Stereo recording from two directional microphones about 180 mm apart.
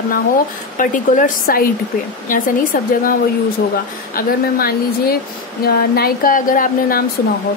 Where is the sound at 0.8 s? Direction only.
50° left (ahead or behind).